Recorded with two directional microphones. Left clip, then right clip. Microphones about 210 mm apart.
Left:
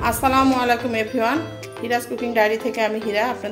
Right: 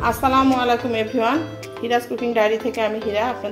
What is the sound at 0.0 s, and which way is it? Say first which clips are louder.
A woman's voice: even; centre (ahead or behind).